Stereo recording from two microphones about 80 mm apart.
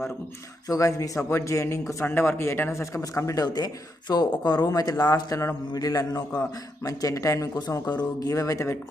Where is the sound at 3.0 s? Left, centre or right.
Left.